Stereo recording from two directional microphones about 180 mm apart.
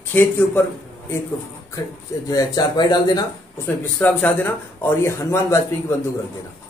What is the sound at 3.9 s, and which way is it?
A man's voice, 10° left (ahead or behind).